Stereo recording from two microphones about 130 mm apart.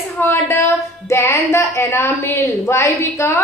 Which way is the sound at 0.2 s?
20° left (ahead or behind).